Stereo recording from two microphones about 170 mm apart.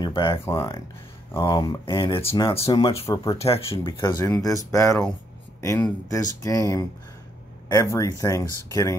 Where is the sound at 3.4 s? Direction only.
35° left (ahead or behind).